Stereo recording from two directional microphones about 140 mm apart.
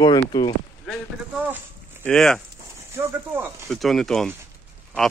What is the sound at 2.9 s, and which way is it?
Speech, 15° right (ahead or behind).